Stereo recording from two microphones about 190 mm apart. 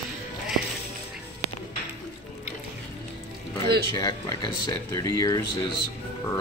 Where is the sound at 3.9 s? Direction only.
20° left (ahead or behind).